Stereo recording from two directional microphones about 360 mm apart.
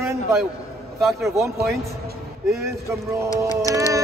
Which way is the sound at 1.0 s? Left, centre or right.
Centre.